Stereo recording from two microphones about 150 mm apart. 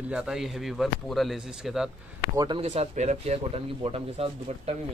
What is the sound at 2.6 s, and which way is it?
Speech, 45° right (ahead or behind).